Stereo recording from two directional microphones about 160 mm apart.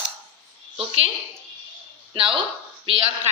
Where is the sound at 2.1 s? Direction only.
35° right (ahead or behind).